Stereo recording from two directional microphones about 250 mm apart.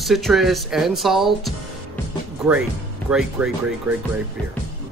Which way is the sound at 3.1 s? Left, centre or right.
Centre.